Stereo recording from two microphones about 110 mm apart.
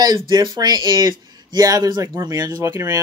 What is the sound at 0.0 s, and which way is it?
Speech, 40° right (ahead or behind).